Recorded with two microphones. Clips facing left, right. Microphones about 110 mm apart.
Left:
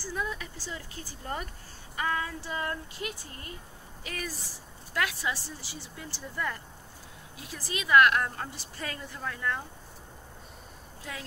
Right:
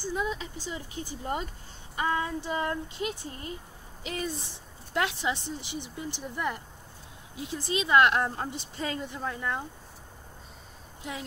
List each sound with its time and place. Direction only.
0.0 s a woman's voice: 20° right (ahead or behind)
11.1 s a woman's voice: 20° right (ahead or behind)